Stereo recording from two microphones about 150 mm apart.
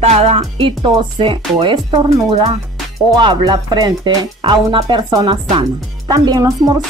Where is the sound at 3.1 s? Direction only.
30° right (ahead or behind).